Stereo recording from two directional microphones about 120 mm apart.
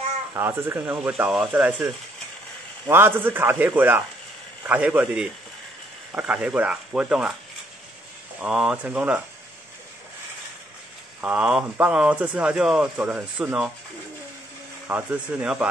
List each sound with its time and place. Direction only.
0.3 s speech: 20° right (ahead or behind)
2.9 s speech: 20° right (ahead or behind)
8.4 s speech: 5° right (ahead or behind)
11.1 s speech: 10° right (ahead or behind)
14.9 s speech: 10° right (ahead or behind)